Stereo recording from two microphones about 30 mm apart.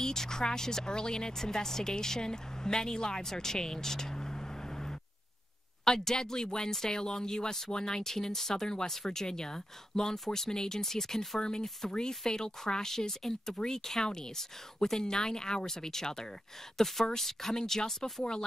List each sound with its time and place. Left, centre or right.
0.0 s a woman's voice: centre
3.3 s vehicle: centre
5.9 s a woman's voice: centre